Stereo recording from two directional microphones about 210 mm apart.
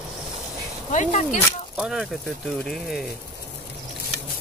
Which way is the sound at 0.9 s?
35° left (ahead or behind).